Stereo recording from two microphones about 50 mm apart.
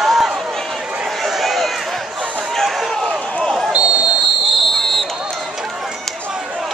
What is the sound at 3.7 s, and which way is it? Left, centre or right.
Basketball bounce, centre.